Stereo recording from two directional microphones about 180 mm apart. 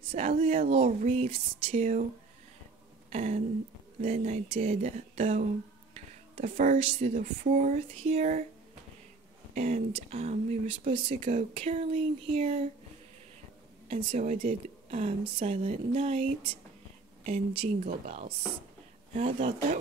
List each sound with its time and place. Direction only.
0.1 s speech: 40° right (ahead or behind)
3.1 s a sound: 40° right (ahead or behind)
4.0 s speech: 35° right (ahead or behind)
9.5 s speech: 40° right (ahead or behind)
13.8 s speech: 35° right (ahead or behind)